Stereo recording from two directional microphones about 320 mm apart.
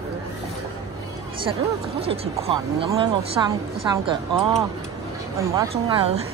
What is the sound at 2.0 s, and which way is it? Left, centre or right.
Speech, centre.